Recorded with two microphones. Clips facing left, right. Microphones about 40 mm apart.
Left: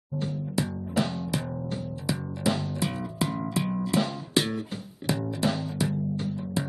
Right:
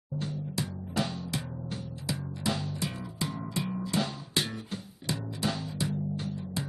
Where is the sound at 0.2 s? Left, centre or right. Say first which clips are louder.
Left 6 dB; centre.